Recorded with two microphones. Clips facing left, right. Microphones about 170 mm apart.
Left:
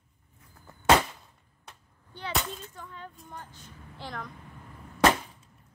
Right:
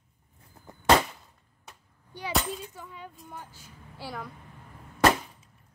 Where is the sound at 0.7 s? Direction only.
15° right (ahead or behind).